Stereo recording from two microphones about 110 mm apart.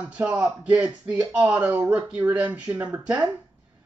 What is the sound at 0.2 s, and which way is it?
Speech, 15° right (ahead or behind).